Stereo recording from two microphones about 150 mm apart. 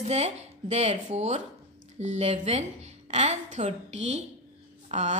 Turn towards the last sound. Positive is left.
turn(degrees=-50)  # may be behind; listen again after turning